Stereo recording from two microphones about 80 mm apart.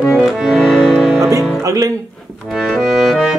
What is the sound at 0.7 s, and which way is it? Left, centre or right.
Music, centre.